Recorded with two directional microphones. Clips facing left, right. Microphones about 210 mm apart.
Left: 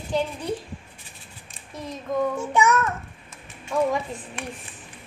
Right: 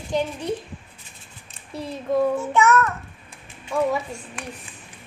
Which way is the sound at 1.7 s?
30° right (ahead or behind).